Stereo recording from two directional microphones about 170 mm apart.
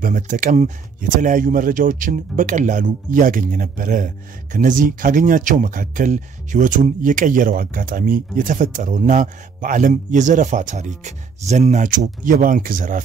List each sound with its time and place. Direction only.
0.0 s speech: 50° right (ahead or behind)